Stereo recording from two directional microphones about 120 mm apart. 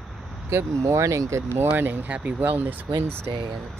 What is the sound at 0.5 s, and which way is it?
Speech, 20° right (ahead or behind).